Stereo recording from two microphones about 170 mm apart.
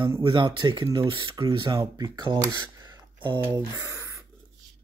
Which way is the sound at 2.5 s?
20° right (ahead or behind).